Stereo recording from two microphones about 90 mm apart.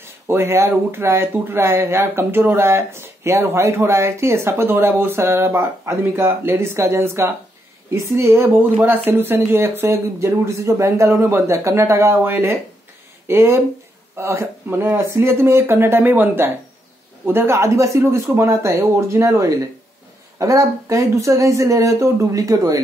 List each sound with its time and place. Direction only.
0.0 s speech: 30° right (ahead or behind)